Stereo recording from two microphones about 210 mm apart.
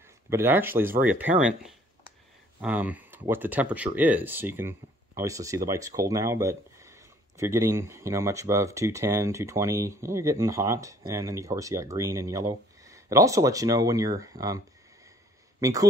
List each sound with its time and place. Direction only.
0.0 s speech: 10° right (ahead or behind)
15.6 s speech: 15° right (ahead or behind)